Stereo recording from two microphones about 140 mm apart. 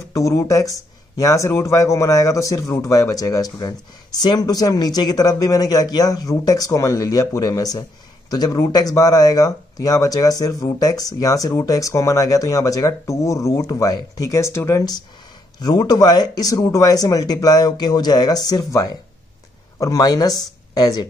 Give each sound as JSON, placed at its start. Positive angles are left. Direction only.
{"t": 0.1, "sound": "speech", "side_deg": 25}